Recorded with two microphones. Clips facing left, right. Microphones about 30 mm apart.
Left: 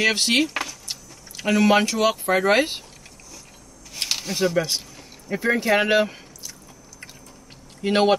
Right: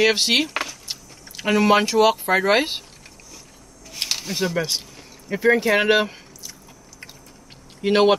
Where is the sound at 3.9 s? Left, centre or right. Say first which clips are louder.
Even; centre.